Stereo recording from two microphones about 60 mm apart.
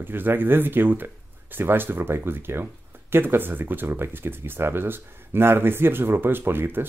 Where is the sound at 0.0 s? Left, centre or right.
Right.